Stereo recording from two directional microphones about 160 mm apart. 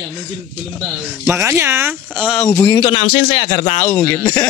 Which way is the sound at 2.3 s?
10° left (ahead or behind).